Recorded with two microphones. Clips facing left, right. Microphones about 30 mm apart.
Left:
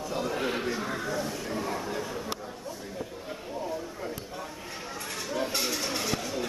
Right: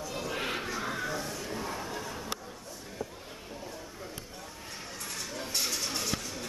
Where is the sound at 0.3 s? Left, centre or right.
Centre.